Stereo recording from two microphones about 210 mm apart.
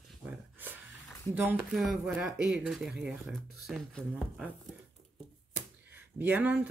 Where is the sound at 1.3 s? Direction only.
10° right (ahead or behind).